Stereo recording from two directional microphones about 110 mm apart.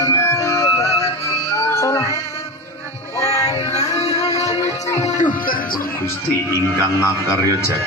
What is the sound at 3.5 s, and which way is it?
Music, 85° left.